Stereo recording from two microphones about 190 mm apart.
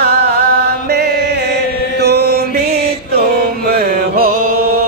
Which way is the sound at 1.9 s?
60° right (ahead or behind).